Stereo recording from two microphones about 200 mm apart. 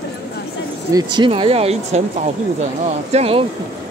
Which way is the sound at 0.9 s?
20° right (ahead or behind).